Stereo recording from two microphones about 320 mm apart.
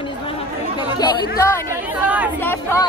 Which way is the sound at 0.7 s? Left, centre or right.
Centre.